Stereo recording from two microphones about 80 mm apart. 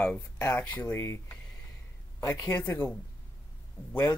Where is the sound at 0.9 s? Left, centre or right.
Left.